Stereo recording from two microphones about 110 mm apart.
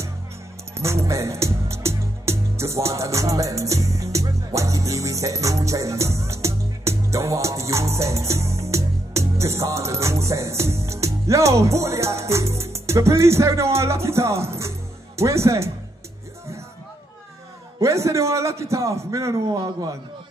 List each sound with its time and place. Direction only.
0.7 s a man's voice: 25° right (ahead or behind)
17.7 s a man's voice: 25° right (ahead or behind)
19.5 s a man's voice: 40° right (ahead or behind)